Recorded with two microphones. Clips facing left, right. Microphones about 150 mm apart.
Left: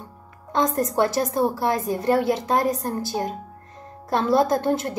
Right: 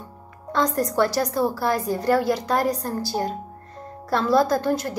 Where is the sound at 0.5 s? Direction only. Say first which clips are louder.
Even; 20° left (ahead or behind).